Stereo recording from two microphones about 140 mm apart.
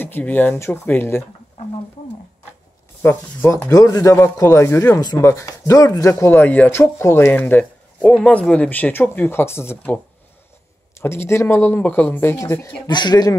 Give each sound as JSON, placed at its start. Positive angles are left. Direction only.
{"t": 0.0, "sound": "speech", "side_deg": 15}
{"t": 3.0, "sound": "speech", "side_deg": 15}
{"t": 11.0, "sound": "speech", "side_deg": 20}